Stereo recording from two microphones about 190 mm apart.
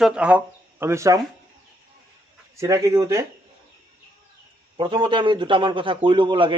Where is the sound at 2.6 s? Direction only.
15° right (ahead or behind).